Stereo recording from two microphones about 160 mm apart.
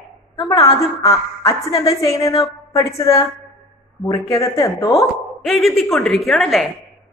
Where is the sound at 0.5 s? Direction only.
20° left (ahead or behind).